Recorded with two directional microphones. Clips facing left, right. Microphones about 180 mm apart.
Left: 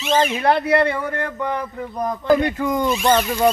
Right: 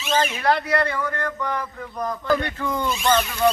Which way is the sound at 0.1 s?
25° left (ahead or behind).